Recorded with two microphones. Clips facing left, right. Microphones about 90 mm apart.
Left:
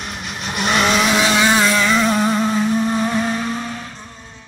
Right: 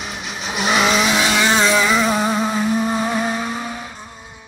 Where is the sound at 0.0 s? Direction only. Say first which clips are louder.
Even; centre (ahead or behind).